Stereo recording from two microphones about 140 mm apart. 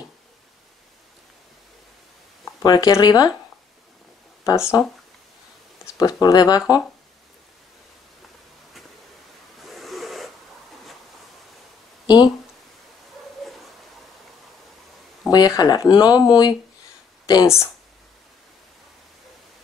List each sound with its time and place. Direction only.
2.6 s speech: 30° left (ahead or behind)
4.5 s speech: 20° left (ahead or behind)
5.9 s speech: 25° left (ahead or behind)
9.6 s a sound: centre (ahead or behind)
15.2 s speech: 30° left (ahead or behind)